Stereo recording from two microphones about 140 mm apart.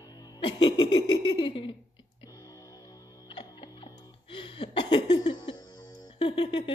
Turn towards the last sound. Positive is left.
turn(degrees=35)  # may be behind; listen again after turning